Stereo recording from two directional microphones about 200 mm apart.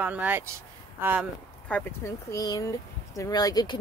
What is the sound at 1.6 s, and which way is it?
Speech, 10° left (ahead or behind).